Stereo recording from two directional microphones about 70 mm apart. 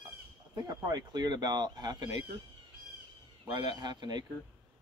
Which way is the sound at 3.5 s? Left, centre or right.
Right.